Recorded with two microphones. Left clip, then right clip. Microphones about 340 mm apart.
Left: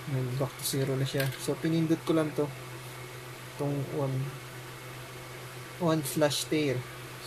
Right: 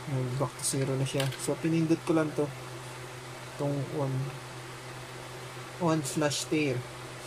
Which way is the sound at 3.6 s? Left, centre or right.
Centre.